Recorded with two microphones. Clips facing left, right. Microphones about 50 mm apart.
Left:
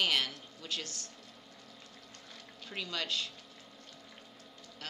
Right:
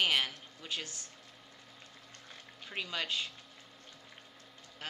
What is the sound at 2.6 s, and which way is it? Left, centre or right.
Speech, right.